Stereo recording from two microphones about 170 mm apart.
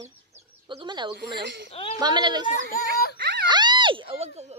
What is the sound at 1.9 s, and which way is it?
Speech, 25° right (ahead or behind).